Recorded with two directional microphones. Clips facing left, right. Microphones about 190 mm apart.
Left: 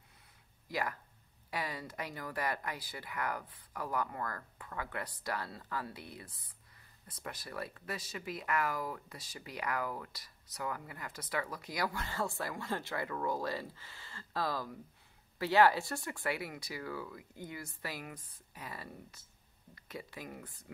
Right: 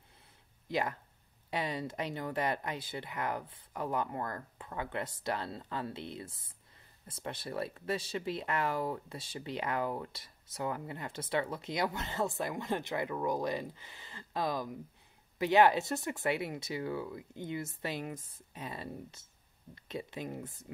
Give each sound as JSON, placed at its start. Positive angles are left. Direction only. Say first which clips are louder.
{"t": 0.7, "sound": "speech", "louder": "right 4 dB", "side_deg": -25}